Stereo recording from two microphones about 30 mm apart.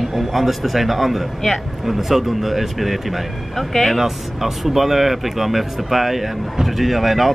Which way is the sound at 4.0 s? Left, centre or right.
Centre.